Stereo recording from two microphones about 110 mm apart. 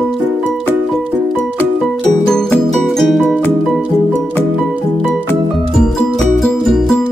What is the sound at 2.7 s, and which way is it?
Music, centre (ahead or behind).